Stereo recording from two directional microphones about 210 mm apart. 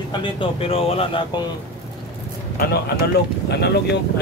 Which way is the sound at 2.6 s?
50° left (ahead or behind).